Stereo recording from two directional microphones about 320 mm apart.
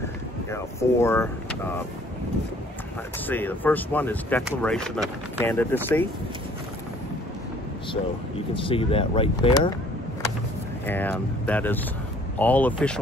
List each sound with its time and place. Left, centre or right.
0.5 s speech: centre
3.3 s speech: centre
8.5 s speech: centre
10.9 s speech: centre